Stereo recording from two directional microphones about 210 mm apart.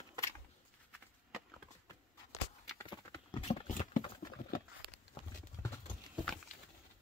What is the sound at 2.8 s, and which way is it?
Clip-clop, 20° left (ahead or behind).